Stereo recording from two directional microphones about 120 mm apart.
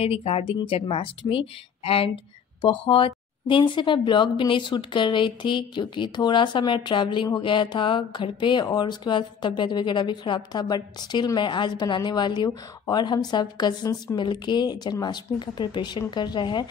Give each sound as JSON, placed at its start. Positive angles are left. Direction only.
{"t": 0.0, "sound": "a woman's voice", "side_deg": 55}